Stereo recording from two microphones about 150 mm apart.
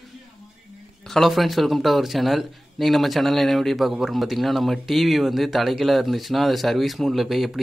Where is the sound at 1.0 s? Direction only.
Centre (ahead or behind).